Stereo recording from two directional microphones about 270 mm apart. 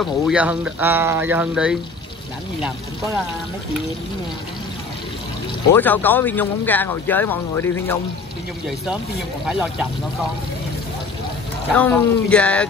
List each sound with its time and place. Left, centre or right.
0.0 s speech: centre
5.7 s speech: centre
9.5 s speech: centre
11.7 s speech: centre